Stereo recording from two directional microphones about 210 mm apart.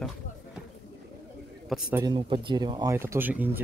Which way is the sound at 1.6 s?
Centre (ahead or behind).